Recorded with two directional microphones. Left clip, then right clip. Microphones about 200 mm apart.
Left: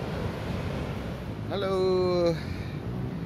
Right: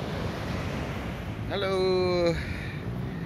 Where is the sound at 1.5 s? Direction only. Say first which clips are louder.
Even; 5° left (ahead or behind).